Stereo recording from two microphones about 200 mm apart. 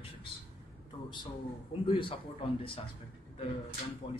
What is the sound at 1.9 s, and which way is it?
Speech, 25° left (ahead or behind).